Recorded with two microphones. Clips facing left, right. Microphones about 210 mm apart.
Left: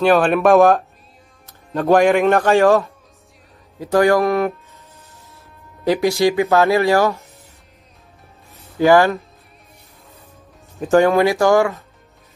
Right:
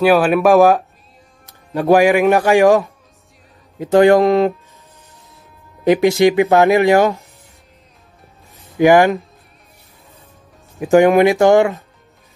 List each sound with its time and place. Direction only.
0.0 s a man's voice: 5° right (ahead or behind); by 4.6 s 20° right (ahead or behind)
5.9 s speech: 20° right (ahead or behind)
8.7 s a man's voice: 15° right (ahead or behind)
10.8 s speech: 15° right (ahead or behind)